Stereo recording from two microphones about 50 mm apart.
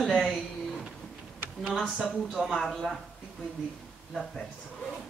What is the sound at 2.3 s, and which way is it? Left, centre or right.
Speech, centre.